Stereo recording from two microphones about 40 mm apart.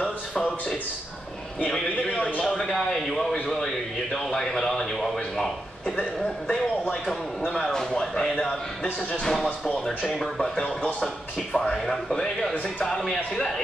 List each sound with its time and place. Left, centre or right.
0.4 s speech: centre
2.0 s a man's voice: left
2.4 s speech: centre